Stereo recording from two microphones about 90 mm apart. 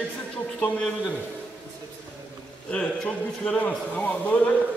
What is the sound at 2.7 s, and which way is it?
A man's voice, 10° left (ahead or behind).